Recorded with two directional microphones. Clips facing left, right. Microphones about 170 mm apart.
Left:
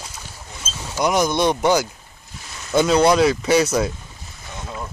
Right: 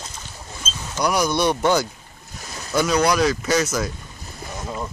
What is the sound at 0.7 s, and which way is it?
Boat, 10° left (ahead or behind).